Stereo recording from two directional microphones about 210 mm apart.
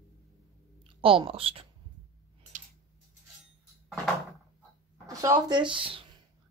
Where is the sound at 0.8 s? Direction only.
25° right (ahead or behind).